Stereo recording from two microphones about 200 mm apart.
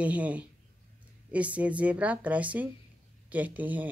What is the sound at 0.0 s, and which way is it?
Speech, 5° right (ahead or behind).